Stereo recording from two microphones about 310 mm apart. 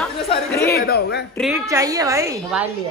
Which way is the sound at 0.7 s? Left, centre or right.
Left.